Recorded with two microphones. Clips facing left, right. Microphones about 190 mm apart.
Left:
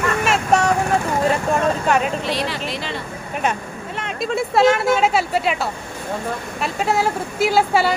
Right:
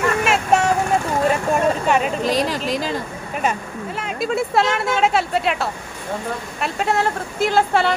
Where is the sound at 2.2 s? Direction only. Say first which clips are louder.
Right 3 dB; 40° right (ahead or behind).